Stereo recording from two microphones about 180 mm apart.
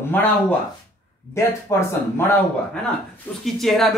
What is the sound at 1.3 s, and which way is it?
Speech, 15° left (ahead or behind).